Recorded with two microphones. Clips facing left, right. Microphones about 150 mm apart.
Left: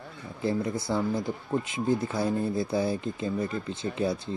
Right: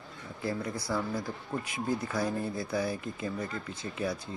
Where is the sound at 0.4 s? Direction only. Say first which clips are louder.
Left 6 dB; 25° left (ahead or behind).